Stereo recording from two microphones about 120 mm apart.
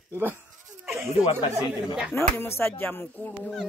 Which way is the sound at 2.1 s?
20° left (ahead or behind).